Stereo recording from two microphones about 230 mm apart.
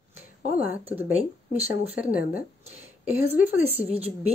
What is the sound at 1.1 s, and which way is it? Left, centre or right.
Speech, right.